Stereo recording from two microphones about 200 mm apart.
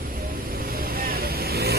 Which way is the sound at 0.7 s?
50° right (ahead or behind).